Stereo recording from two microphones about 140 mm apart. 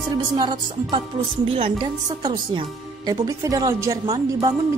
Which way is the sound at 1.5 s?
35° right (ahead or behind).